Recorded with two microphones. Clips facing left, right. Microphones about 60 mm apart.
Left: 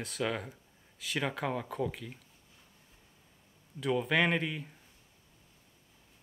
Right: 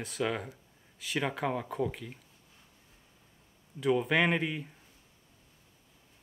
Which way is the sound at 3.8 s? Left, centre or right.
Centre.